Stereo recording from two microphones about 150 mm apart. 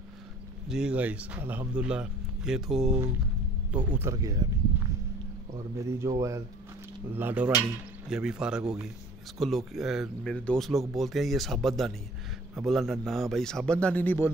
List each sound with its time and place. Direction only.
0.7 s speech: 5° right (ahead or behind)
3.7 s speech: 15° right (ahead or behind)
5.8 s speech: 20° right (ahead or behind); by 14.3 s 10° left (ahead or behind)